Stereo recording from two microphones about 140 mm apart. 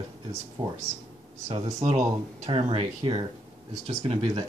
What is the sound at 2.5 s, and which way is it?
Speech, 40° right (ahead or behind).